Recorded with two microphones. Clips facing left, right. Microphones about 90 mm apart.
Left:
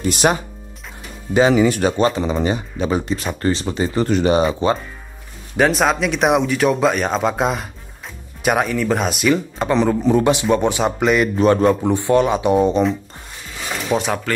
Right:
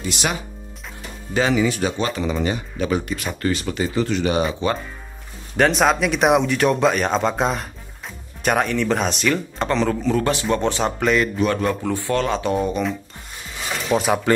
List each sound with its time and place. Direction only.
0.0 s speech: 45° left (ahead or behind)
1.5 s speech: 45° left (ahead or behind)
2.1 s speech: 25° left (ahead or behind)
3.9 s speech: 40° left (ahead or behind)
5.6 s speech: centre (ahead or behind)
11.3 s speech: 30° left (ahead or behind)
11.7 s speech: 20° left (ahead or behind)
13.8 s speech: centre (ahead or behind)